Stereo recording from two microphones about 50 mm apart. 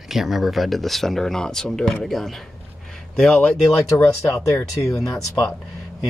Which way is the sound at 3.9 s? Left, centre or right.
Left.